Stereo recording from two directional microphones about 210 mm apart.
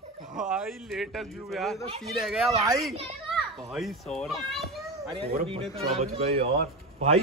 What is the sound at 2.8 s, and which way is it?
Children playing, centre (ahead or behind).